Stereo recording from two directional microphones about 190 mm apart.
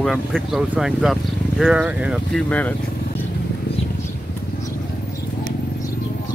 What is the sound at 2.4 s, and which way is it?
Speech, 10° left (ahead or behind).